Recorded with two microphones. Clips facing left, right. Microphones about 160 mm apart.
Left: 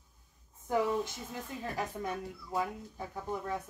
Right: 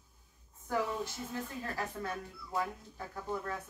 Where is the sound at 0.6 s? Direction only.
20° left (ahead or behind).